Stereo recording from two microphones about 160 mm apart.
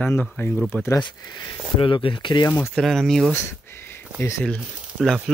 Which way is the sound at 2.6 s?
Centre (ahead or behind).